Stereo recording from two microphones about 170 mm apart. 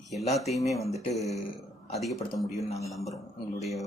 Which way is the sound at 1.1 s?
Centre (ahead or behind).